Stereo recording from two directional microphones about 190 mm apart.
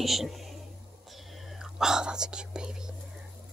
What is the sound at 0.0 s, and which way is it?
Speech, centre (ahead or behind).